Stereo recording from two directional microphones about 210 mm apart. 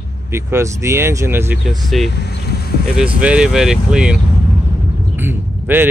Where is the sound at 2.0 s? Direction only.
50° left (ahead or behind).